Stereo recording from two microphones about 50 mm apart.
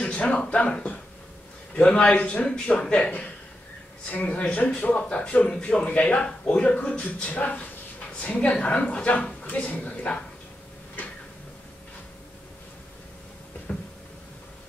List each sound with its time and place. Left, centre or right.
0.0 s speech: left
4.1 s speech: left